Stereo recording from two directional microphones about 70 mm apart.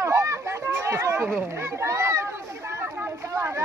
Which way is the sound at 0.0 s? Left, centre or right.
Right.